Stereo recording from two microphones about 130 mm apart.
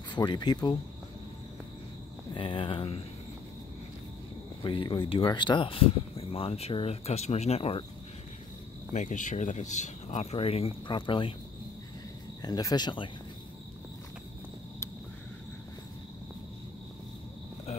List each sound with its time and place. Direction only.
0.1 s speech: 35° left (ahead or behind)
2.3 s speech: 40° left (ahead or behind)
4.6 s speech: 40° left (ahead or behind)
8.9 s speech: 75° left (ahead or behind); by 11.3 s 40° left (ahead or behind)
12.4 s speech: 30° left (ahead or behind)